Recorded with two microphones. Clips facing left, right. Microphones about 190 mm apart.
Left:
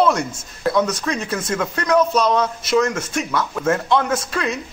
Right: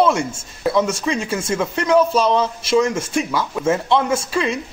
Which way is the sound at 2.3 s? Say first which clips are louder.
Right 1 dB; 25° right (ahead or behind).